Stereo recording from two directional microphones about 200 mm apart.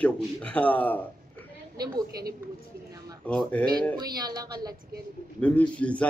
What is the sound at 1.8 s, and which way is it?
Speech, 20° right (ahead or behind).